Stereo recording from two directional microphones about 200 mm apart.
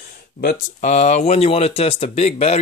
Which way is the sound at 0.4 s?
45° left (ahead or behind).